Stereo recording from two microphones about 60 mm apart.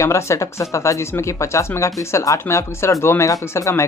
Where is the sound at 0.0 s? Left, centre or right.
Left.